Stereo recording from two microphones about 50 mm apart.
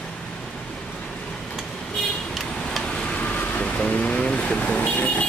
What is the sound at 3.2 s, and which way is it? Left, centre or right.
Vehicle, left.